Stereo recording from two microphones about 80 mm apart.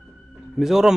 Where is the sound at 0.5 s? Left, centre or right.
Centre.